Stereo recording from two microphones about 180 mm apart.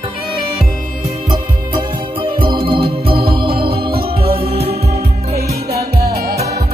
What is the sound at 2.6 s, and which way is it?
Organ, 30° right (ahead or behind).